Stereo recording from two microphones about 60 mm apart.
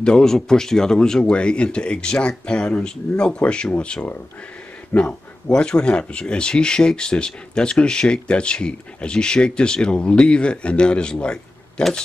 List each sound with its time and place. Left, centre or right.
0.0 s speech: centre